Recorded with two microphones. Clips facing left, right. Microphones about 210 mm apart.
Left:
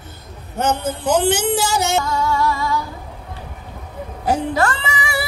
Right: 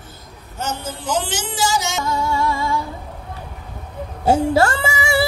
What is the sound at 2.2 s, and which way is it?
Music, 25° right (ahead or behind).